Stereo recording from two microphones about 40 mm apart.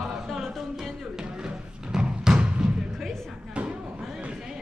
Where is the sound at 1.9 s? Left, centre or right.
Centre.